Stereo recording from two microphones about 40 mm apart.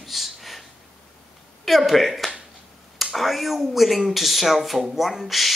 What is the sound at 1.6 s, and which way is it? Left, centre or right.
A man's voice, centre.